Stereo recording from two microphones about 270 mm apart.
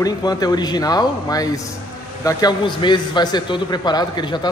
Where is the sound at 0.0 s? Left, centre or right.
Centre.